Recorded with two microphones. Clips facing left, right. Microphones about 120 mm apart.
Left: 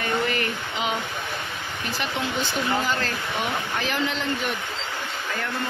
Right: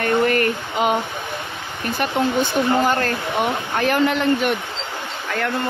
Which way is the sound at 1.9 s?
55° right (ahead or behind).